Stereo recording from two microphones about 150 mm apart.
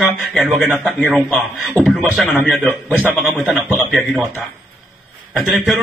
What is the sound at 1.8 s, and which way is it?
Speech, 15° right (ahead or behind).